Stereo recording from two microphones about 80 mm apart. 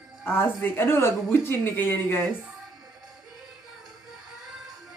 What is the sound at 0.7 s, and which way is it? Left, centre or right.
Speech, left.